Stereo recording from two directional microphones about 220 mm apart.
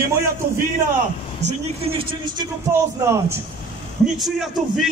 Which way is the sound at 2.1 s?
20° right (ahead or behind).